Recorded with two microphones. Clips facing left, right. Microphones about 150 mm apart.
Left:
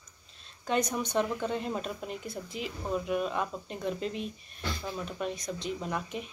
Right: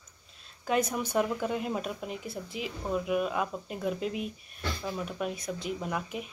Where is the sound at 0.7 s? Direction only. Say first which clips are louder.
Right 1 dB; 5° right (ahead or behind).